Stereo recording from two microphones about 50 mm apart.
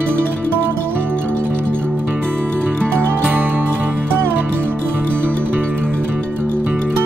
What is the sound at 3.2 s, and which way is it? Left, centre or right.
Music, right.